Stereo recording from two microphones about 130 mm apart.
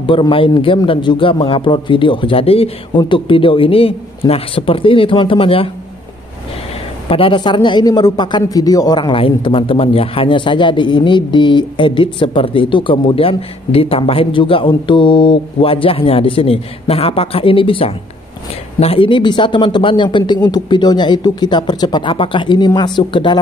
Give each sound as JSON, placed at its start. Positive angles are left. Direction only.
{"t": 0.0, "sound": "a man's voice", "side_deg": 40}
{"t": 7.1, "sound": "speech", "side_deg": 45}